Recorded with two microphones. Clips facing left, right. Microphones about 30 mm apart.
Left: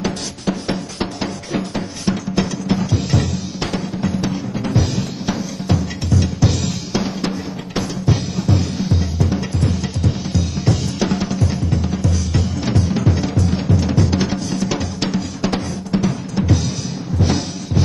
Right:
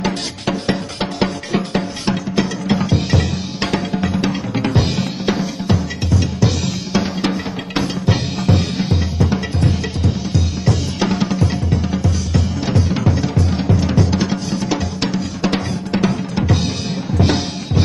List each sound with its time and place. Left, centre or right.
0.0 s music: right
2.7 s music: right
3.7 s music: right
4.1 s music: right
5.7 s drum: centre
7.2 s music: right
11.0 s music: right
12.3 s music: centre
12.8 s music: centre
13.9 s music: centre
15.5 s drum: right
17.2 s drum: right